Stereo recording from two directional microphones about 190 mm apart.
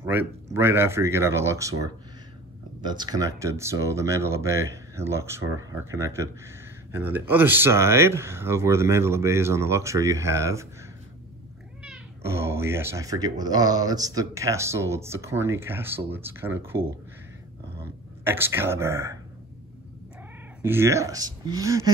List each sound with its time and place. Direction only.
0.0 s speech: 10° right (ahead or behind)
11.8 s speech: 10° right (ahead or behind)
18.2 s speech: 10° right (ahead or behind)
20.6 s speech: 15° right (ahead or behind)